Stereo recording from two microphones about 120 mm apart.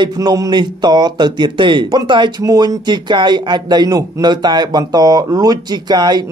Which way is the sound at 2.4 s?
30° right (ahead or behind).